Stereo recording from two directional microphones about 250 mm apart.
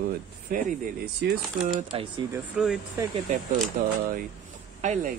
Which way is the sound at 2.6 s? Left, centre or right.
Centre.